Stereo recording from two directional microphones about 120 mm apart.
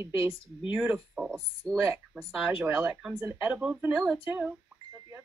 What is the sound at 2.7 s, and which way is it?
A woman's voice, 25° right (ahead or behind).